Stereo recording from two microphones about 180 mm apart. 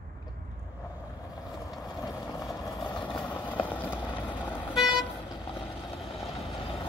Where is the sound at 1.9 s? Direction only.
20° left (ahead or behind).